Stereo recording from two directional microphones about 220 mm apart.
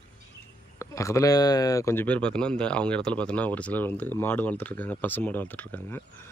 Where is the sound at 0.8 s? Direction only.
15° left (ahead or behind).